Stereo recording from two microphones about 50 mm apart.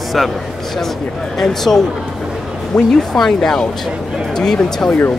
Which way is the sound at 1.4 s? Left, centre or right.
Centre.